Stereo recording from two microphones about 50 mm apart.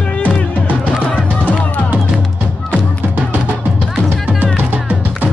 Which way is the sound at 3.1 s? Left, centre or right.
Right.